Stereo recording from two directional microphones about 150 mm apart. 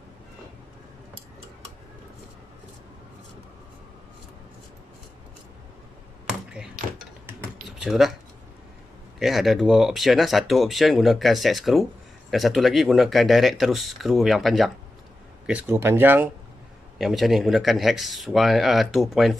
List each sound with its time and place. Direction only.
6.2 s a sound: 5° right (ahead or behind)
7.8 s speech: 5° right (ahead or behind)
9.2 s speech: centre (ahead or behind)
15.7 s speech: 15° right (ahead or behind)
17.0 s speech: centre (ahead or behind)